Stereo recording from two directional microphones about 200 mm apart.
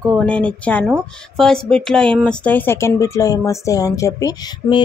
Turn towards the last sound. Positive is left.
turn(degrees=20)  # may be behind; listen again after turning